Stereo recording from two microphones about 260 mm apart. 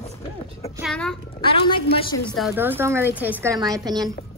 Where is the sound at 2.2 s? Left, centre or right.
Centre.